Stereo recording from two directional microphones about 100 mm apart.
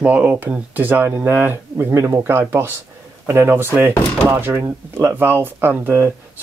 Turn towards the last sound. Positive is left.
turn(degrees=-20)  # may be behind; listen again after turning